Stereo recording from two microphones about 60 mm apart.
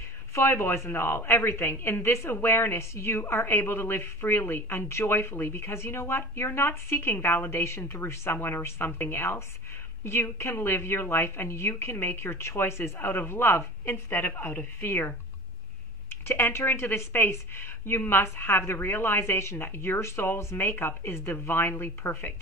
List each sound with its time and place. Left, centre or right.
0.3 s a woman's voice: left
13.4 s a woman's voice: left
16.3 s a woman's voice: left